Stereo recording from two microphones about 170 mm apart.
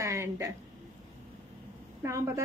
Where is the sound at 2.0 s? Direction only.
15° right (ahead or behind).